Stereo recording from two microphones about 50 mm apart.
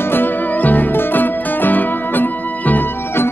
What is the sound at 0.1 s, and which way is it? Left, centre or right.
Music, left.